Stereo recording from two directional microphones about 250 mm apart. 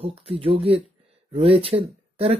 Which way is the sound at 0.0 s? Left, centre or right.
Right.